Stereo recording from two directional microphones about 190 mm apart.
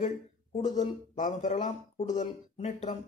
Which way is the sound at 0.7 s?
40° left (ahead or behind).